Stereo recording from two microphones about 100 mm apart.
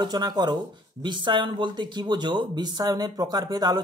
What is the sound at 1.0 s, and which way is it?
Speech, 55° right (ahead or behind).